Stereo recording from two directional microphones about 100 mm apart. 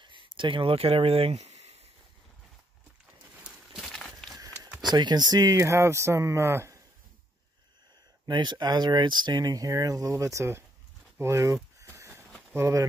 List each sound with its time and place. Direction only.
0.0 s a sound: 55° right (ahead or behind); by 1.9 s 90° right
3.7 s walk: 5° left (ahead or behind)
4.9 s speech: 45° right (ahead or behind); by 6.8 s 30° right (ahead or behind)
8.3 s speech: 50° right (ahead or behind); by 10.6 s 30° right (ahead or behind)
11.1 s a sound: 30° right (ahead or behind)
12.5 s speech: 30° right (ahead or behind)